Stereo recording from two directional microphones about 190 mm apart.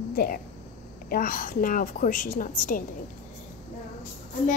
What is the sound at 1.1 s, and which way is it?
A woman's voice, 50° left (ahead or behind).